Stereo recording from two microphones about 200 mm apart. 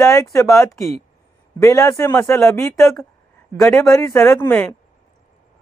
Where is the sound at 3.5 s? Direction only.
Centre (ahead or behind).